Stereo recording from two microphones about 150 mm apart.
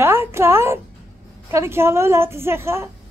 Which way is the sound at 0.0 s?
15° right (ahead or behind).